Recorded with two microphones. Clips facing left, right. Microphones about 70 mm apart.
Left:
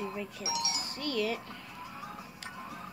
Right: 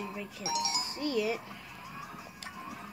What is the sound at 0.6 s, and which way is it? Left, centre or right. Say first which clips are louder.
Speech: right 3 dB; centre.